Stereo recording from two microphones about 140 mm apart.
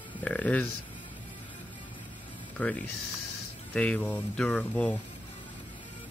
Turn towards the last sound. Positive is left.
turn(degrees=10)  # may be behind; listen again after turning